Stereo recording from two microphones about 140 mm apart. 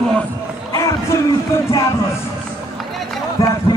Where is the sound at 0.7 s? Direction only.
20° left (ahead or behind).